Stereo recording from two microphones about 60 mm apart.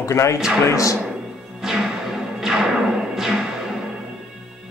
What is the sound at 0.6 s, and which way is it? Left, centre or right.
Speech, left.